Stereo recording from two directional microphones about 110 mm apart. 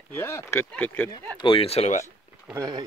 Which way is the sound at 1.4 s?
55° left (ahead or behind).